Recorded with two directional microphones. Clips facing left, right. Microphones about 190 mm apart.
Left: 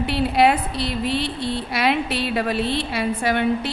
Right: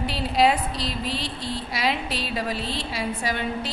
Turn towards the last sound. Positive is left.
turn(degrees=60)  # may be behind; listen again after turning